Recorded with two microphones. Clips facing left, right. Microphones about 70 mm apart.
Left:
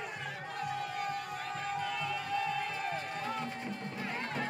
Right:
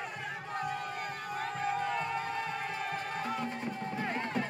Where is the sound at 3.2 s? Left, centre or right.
Centre.